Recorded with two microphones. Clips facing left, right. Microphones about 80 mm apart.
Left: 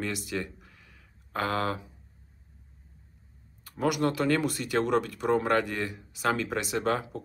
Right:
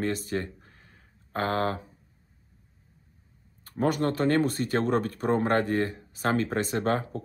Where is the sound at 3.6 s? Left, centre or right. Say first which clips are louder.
Right 1 dB; right.